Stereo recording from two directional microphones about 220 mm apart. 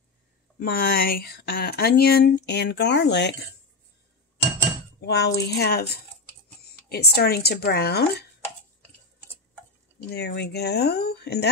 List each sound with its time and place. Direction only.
0.6 s speech: 40° left (ahead or behind)
5.0 s speech: 50° left (ahead or behind)
10.0 s speech: 50° left (ahead or behind)